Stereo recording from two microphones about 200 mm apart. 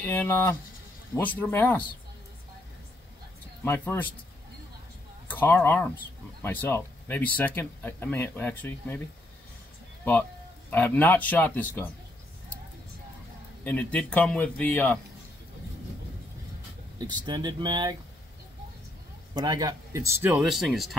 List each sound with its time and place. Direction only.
0.0 s speech: 10° left (ahead or behind)
3.6 s speech: 10° left (ahead or behind)
5.3 s speech: 10° left (ahead or behind)
10.7 s speech: 10° left (ahead or behind)
13.7 s speech: 5° left (ahead or behind)
17.0 s speech: 20° right (ahead or behind)
19.3 s speech: 20° right (ahead or behind); by 20.9 s centre (ahead or behind)